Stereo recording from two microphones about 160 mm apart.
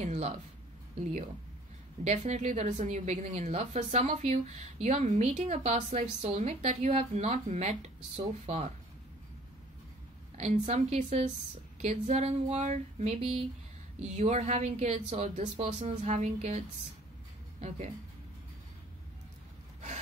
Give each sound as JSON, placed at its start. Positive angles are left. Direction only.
{"t": 0.0, "sound": "a woman's voice", "side_deg": -45}
{"t": 2.0, "sound": "a woman's voice", "side_deg": -45}
{"t": 10.4, "sound": "a woman's voice", "side_deg": -45}